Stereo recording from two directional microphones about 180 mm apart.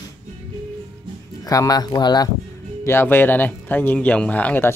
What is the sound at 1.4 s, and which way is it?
Speech, 20° left (ahead or behind).